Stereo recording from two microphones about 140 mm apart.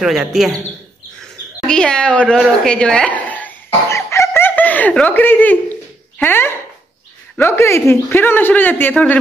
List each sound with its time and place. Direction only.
0.0 s speech: centre (ahead or behind)
1.7 s a sound: 5° left (ahead or behind)
6.1 s a man's voice: 15° left (ahead or behind)